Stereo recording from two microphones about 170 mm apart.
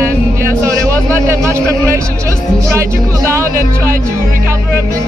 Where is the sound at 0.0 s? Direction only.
15° right (ahead or behind).